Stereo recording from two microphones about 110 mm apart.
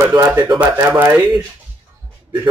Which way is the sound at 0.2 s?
20° right (ahead or behind).